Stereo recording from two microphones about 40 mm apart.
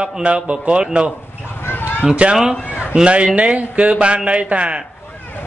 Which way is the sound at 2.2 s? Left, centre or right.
Right.